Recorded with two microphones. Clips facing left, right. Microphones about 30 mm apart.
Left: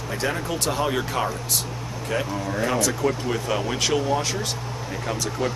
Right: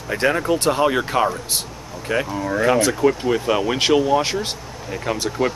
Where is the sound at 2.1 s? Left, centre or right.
Right.